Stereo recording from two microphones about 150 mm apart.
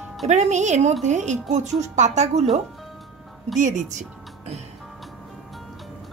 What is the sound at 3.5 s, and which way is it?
Speech, 55° right (ahead or behind).